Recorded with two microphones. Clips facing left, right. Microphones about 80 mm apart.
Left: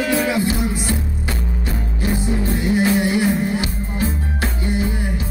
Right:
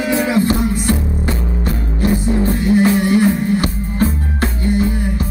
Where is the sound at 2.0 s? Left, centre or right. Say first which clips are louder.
Right 5 dB; right.